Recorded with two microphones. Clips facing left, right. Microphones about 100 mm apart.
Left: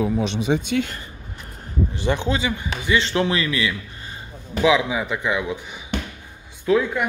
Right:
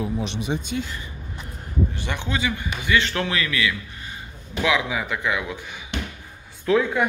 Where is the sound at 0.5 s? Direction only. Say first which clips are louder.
Left 6 dB; 75° left (ahead or behind).